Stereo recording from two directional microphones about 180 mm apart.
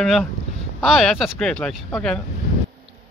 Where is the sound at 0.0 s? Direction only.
Centre (ahead or behind).